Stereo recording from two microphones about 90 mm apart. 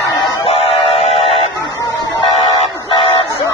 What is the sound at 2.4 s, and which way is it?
Music, 90° left.